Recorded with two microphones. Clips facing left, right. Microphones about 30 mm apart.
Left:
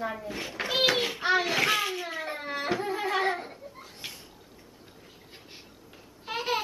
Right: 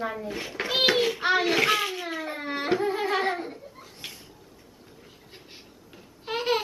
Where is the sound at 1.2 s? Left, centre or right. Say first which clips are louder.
Right 1 dB; centre.